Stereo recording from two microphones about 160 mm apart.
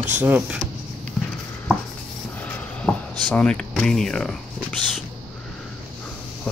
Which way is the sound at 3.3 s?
5° left (ahead or behind).